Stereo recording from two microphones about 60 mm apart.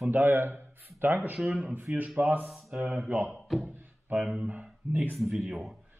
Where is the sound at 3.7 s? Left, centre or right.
Right.